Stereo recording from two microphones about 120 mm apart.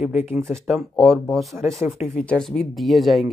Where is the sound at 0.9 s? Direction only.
Centre (ahead or behind).